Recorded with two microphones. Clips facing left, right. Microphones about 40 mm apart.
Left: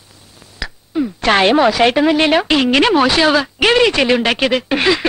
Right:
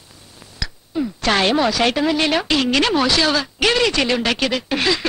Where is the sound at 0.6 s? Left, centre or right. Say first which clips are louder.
Left 4 dB; left.